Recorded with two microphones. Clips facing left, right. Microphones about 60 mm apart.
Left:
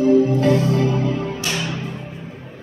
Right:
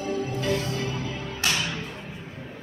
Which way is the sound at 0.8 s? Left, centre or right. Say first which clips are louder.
Left 11 dB; left.